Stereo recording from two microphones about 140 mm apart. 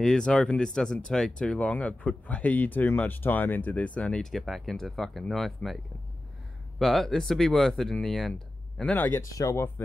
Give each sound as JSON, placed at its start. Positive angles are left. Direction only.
{"t": 0.0, "sound": "speech", "side_deg": 5}
{"t": 6.8, "sound": "speech", "side_deg": 0}
{"t": 9.3, "sound": "speech", "side_deg": 25}